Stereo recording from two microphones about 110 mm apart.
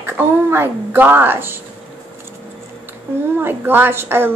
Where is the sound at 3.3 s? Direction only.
20° right (ahead or behind).